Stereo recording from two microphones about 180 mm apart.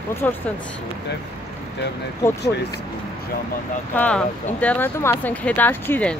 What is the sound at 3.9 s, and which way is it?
Speech, 10° left (ahead or behind).